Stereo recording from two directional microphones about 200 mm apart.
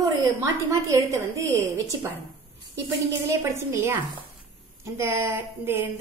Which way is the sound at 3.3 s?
15° right (ahead or behind).